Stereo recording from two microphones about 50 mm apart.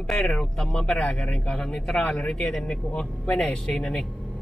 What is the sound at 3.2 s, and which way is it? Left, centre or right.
Speech, left.